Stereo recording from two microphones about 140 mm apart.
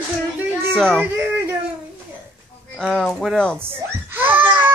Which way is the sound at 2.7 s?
5° left (ahead or behind).